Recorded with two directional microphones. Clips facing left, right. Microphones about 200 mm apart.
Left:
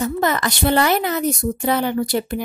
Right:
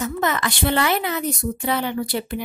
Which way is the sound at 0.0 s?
35° left (ahead or behind).